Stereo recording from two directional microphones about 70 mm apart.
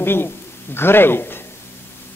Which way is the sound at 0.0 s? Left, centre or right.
Left.